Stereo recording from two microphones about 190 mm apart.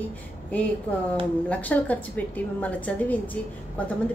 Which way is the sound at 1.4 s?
10° left (ahead or behind).